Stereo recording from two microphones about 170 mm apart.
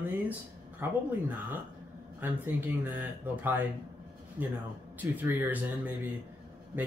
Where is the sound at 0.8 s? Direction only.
10° right (ahead or behind).